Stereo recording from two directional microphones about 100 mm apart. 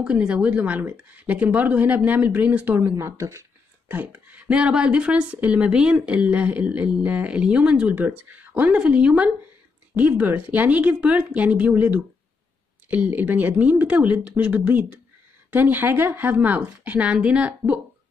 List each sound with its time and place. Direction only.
0.0 s speech: 10° right (ahead or behind); by 3.4 s 30° right (ahead or behind)
3.9 s speech: 20° right (ahead or behind)
7.9 s speech: 20° right (ahead or behind)